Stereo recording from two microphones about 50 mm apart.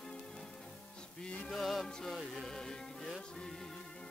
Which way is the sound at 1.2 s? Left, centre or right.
Centre.